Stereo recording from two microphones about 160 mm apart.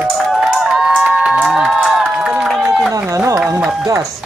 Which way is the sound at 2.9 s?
20° right (ahead or behind).